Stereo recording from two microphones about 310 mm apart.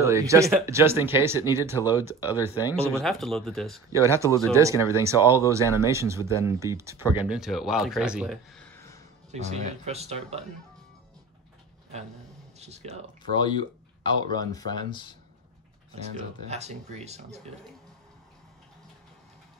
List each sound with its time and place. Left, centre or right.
0.0 s speech: centre
1.4 s speech: centre
2.8 s speech: centre
4.5 s speech: centre
9.3 s speech: right
12.5 s speech: right
13.3 s speech: centre
15.9 s speech: right